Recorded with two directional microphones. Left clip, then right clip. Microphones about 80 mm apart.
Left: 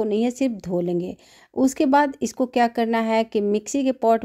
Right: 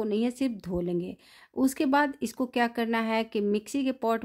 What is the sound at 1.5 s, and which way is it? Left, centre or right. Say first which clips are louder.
Speech: left 7 dB; left.